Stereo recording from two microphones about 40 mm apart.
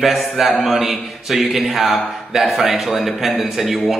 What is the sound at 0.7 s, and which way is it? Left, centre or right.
A man's voice, centre.